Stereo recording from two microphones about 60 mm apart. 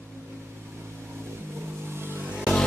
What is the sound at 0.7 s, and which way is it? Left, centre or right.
Vehicle, right.